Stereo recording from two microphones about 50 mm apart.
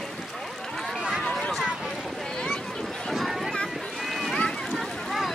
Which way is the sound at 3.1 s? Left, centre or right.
Centre.